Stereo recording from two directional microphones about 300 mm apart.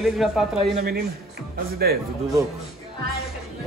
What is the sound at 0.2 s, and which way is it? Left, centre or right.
Speech, centre.